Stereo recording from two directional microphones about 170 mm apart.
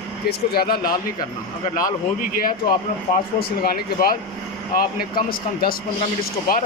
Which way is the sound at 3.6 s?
60° left (ahead or behind).